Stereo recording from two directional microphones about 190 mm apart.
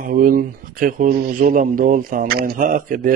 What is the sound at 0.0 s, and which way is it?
Speech, 45° right (ahead or behind).